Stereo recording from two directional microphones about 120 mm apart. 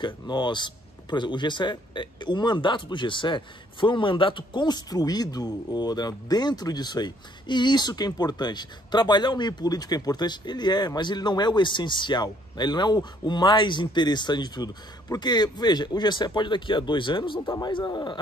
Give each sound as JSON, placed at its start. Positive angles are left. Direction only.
{"t": 0.0, "sound": "a man's voice", "side_deg": 40}